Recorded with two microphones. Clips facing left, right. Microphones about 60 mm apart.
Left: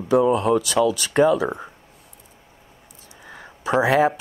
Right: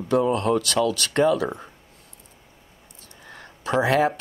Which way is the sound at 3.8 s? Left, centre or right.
Centre.